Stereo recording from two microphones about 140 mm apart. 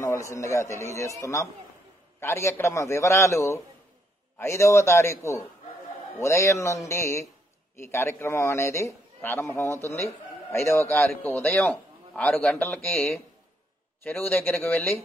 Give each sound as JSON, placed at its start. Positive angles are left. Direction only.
{"t": 0.0, "sound": "a man's voice", "side_deg": 20}